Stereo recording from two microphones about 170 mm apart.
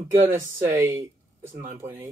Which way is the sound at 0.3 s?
20° right (ahead or behind).